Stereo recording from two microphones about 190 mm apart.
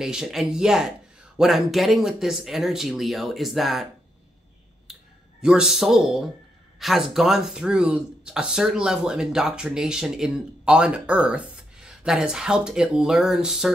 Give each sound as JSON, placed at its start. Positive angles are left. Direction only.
{"t": 0.0, "sound": "speech", "side_deg": 0}
{"t": 4.9, "sound": "a sound", "side_deg": 0}
{"t": 5.4, "sound": "speech", "side_deg": -5}